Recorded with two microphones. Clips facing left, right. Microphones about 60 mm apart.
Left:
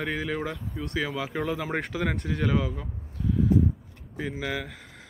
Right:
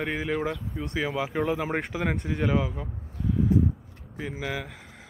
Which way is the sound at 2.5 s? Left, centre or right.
Centre.